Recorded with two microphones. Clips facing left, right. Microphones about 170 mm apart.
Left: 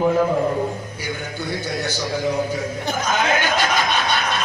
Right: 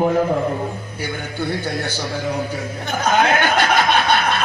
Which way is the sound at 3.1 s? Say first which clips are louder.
Right 4 dB; 55° right (ahead or behind).